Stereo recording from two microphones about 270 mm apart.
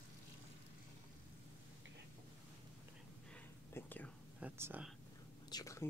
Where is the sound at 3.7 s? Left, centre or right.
Centre.